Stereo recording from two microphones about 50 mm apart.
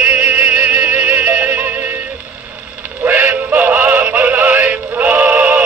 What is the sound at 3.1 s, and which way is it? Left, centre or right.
Synthetic singing, right.